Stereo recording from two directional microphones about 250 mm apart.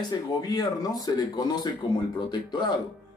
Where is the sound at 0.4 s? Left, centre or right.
Centre.